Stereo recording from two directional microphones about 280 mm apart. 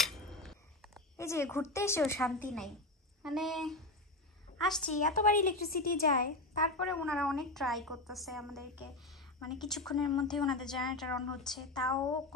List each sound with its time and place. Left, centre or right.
0.0 s a sound: centre
3.2 s a woman's voice: centre
5.2 s a woman's voice: left
6.8 s a woman's voice: centre